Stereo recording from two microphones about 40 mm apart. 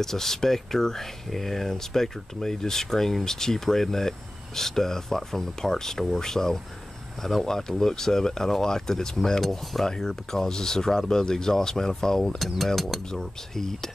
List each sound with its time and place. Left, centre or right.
0.0 s speech: centre
12.4 s speech: centre